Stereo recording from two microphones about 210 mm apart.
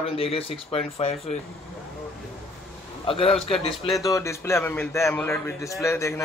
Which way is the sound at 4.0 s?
15° left (ahead or behind).